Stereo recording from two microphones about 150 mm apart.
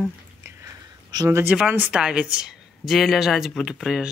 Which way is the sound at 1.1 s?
25° right (ahead or behind).